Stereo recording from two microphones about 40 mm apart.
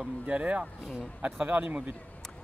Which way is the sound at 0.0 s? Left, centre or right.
Right.